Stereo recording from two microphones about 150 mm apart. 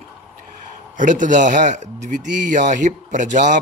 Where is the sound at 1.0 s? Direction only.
60° right (ahead or behind).